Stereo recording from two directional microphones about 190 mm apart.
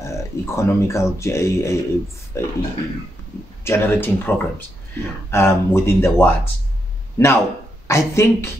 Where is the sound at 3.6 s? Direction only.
15° left (ahead or behind).